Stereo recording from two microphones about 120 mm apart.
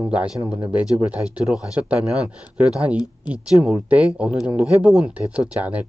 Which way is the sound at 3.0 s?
35° left (ahead or behind).